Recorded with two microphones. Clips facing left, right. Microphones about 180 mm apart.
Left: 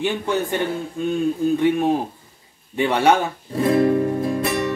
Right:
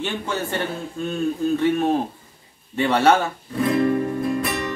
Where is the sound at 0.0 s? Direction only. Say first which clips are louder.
Left 4 dB; 15° left (ahead or behind).